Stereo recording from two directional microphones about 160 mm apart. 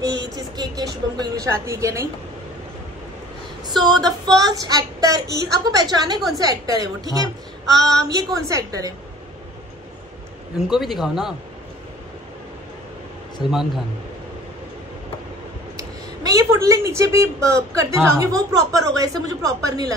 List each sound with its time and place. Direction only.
0.2 s vehicle: 25° right (ahead or behind)
1.1 s a woman's voice: 25° right (ahead or behind)
3.6 s a woman's voice: 25° right (ahead or behind)
10.7 s a man's voice: centre (ahead or behind)
13.5 s a man's voice: centre (ahead or behind)
15.7 s a woman's voice: 20° right (ahead or behind)